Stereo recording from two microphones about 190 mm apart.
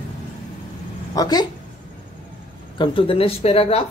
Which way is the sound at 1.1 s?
20° left (ahead or behind).